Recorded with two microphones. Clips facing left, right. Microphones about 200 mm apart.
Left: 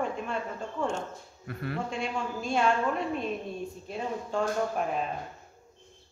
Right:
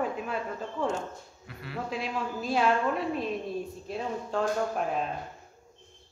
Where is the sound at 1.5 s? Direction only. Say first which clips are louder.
Left 9 dB; 50° left (ahead or behind).